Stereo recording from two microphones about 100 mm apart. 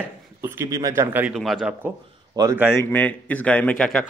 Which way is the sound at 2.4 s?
40° right (ahead or behind).